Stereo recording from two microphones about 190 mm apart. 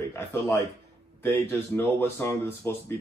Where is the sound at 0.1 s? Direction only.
15° left (ahead or behind).